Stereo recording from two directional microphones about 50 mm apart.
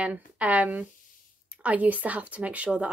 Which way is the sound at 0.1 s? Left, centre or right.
Right.